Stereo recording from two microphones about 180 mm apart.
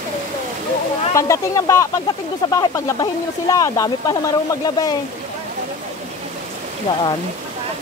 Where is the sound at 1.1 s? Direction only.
20° left (ahead or behind).